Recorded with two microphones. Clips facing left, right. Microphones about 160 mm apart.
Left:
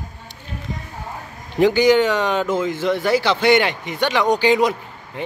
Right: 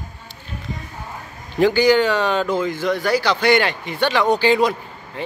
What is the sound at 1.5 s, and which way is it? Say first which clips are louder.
Speech: left 1 dB; 20° left (ahead or behind).